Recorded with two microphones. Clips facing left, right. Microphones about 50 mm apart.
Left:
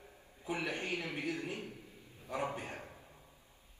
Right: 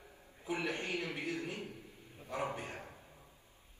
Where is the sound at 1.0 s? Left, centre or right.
Left.